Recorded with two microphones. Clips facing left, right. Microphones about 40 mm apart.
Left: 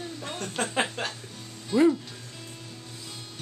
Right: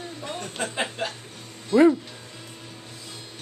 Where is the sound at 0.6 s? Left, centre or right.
Left.